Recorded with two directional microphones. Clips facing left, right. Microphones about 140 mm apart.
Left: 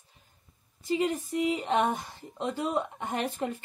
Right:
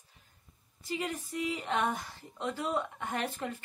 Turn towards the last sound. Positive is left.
turn(degrees=20)  # may be behind; listen again after turning